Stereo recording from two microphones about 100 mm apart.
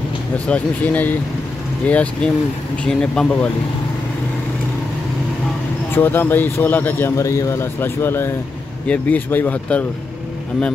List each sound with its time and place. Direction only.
0.5 s speech: 15° left (ahead or behind)
5.9 s speech: 20° left (ahead or behind)